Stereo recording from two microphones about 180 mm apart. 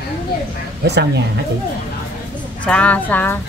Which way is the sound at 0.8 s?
70° right (ahead or behind).